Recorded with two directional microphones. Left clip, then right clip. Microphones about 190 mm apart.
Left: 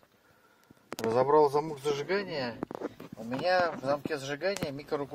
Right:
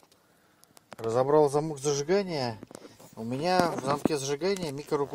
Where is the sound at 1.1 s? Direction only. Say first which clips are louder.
Right 1 dB; 15° right (ahead or behind).